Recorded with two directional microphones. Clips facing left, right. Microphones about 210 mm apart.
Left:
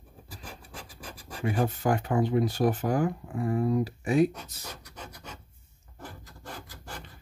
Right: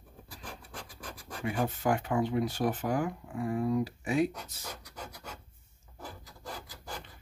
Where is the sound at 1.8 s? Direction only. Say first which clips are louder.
Left 3 dB; 40° left (ahead or behind).